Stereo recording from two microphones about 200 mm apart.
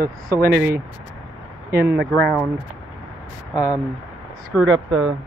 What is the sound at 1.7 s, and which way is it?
Speech, 55° right (ahead or behind).